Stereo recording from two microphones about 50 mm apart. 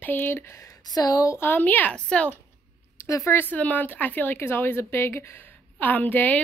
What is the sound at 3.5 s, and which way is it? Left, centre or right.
A woman's voice, left.